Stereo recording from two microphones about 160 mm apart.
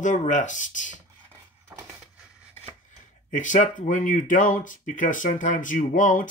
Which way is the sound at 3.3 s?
50° left (ahead or behind).